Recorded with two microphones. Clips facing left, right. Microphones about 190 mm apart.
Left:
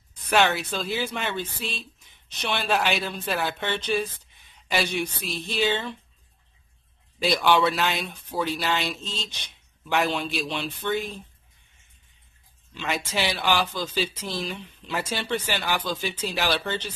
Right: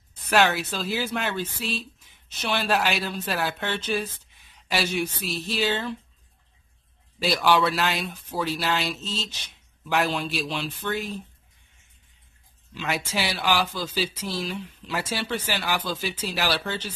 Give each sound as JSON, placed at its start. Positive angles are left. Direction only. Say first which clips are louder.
{"t": 0.3, "sound": "speech", "louder": "even", "side_deg": 0}
{"t": 7.2, "sound": "speech", "louder": "even", "side_deg": 0}
{"t": 12.7, "sound": "speech", "louder": "even", "side_deg": -5}